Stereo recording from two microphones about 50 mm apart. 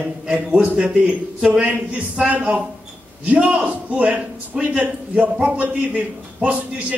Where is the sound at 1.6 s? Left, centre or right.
Right.